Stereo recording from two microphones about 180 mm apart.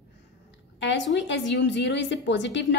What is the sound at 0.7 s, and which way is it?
A woman's voice, 80° left.